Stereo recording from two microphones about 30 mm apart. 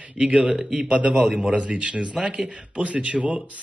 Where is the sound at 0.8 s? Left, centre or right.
Right.